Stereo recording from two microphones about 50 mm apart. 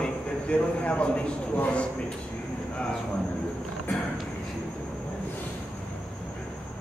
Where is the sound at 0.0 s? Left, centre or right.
Left.